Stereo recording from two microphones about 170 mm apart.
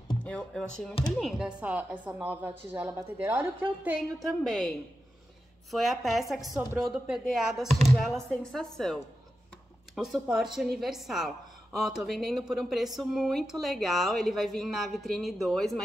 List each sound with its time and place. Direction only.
0.2 s speech: 5° left (ahead or behind); by 3.9 s 15° right (ahead or behind)
4.3 s speech: centre (ahead or behind)